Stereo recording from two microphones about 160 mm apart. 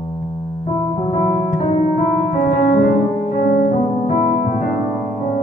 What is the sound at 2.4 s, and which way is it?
Keyboard, 75° left (ahead or behind).